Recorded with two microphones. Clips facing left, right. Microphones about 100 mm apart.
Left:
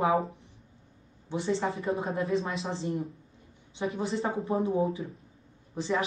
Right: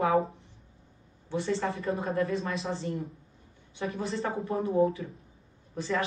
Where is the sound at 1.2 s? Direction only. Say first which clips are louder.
Even; 25° left (ahead or behind).